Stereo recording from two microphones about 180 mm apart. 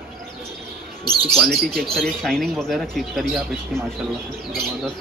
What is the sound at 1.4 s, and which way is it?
Speech, centre (ahead or behind).